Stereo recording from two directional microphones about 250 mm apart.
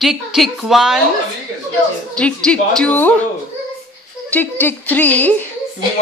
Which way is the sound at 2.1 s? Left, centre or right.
Centre.